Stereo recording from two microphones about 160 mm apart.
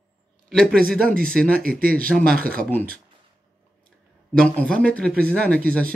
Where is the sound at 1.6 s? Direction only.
65° right (ahead or behind).